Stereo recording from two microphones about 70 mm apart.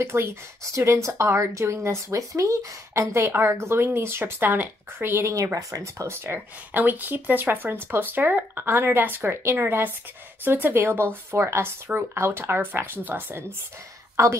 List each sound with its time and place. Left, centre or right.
0.0 s speech: right
5.3 s speech: right
14.2 s a woman's voice: right